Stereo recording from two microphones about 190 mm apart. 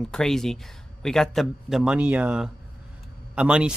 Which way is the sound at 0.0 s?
5° left (ahead or behind).